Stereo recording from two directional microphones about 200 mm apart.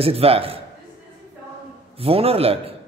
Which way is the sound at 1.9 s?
30° right (ahead or behind).